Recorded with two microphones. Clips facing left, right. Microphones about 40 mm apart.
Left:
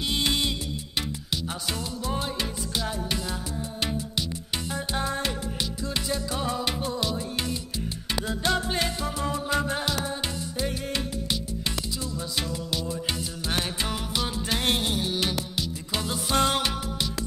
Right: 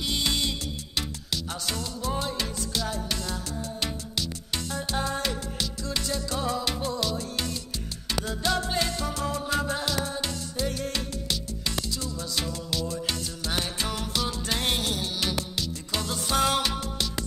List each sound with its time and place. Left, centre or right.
0.1 s music: centre
1.7 s music: centre
8.3 s salsa music: centre
13.5 s music: centre